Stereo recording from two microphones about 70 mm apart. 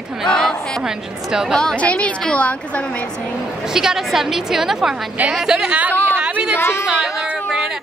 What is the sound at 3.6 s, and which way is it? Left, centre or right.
A woman's voice, centre.